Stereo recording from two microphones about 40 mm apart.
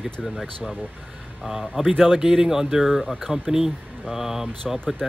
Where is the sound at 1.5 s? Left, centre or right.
Right.